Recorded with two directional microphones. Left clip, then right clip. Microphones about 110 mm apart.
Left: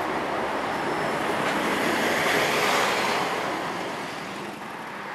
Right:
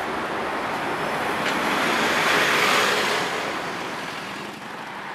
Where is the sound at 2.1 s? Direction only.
15° right (ahead or behind).